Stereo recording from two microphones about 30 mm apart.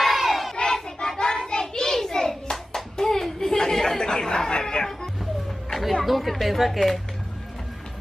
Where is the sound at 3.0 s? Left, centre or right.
Centre.